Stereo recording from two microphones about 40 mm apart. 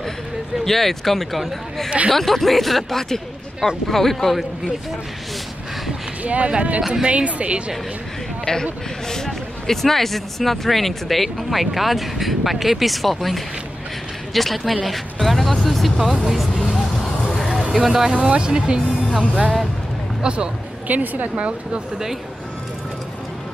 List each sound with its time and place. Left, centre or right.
0.7 s speech: centre
6.2 s speech: right
8.5 s a man's voice: left
9.1 s speech: centre
16.7 s vehicle: centre
17.7 s speech: centre
18.1 s speech: right
20.9 s a woman's voice: right
21.4 s speech: right